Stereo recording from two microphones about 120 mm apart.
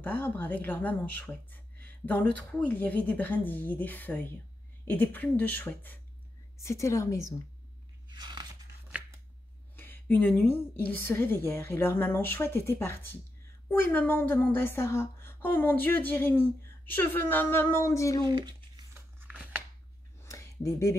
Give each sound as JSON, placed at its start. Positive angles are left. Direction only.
{"t": 0.0, "sound": "a woman's voice", "side_deg": 15}
{"t": 8.1, "sound": "biting", "side_deg": -35}
{"t": 9.8, "sound": "speech", "side_deg": 15}
{"t": 18.2, "sound": "speech", "side_deg": -40}
{"t": 19.1, "sound": "scissors", "side_deg": -10}
{"t": 20.2, "sound": "a sound", "side_deg": 25}